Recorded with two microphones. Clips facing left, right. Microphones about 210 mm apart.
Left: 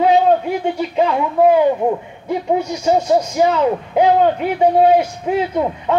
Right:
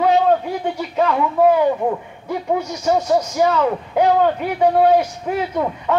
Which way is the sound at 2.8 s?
20° left (ahead or behind).